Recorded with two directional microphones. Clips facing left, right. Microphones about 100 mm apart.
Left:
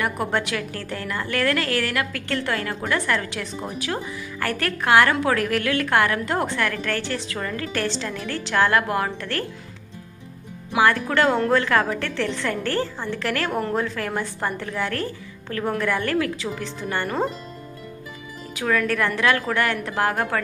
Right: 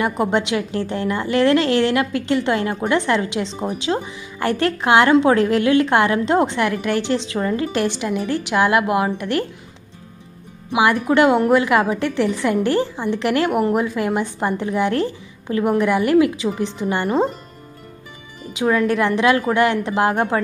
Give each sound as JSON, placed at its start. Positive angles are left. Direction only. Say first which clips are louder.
{"t": 0.0, "sound": "a woman's voice", "louder": "right 5 dB", "side_deg": -20}
{"t": 10.7, "sound": "a woman's voice", "louder": "right 3 dB", "side_deg": -15}
{"t": 18.5, "sound": "a woman's voice", "louder": "right 5 dB", "side_deg": -20}